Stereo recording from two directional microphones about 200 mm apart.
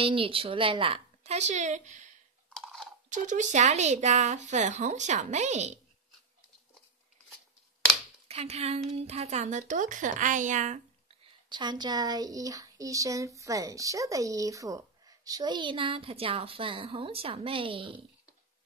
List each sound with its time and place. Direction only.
0.0 s speech: 25° right (ahead or behind)
2.5 s chewing: 5° left (ahead or behind)
3.1 s speech: 40° right (ahead or behind)
8.3 s a woman's voice: 30° right (ahead or behind)
11.4 s speech: 20° right (ahead or behind)